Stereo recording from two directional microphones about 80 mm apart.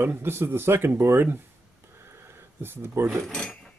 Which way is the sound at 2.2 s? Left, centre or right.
Right.